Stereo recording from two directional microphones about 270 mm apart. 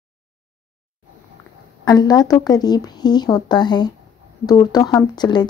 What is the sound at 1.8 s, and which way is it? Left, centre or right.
Speech, centre.